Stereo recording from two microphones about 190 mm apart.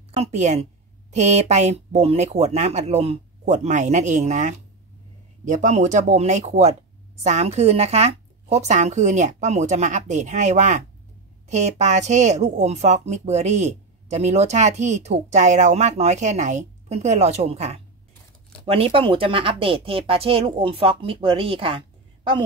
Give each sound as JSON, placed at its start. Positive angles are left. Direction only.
{"t": 0.1, "sound": "speech", "side_deg": -35}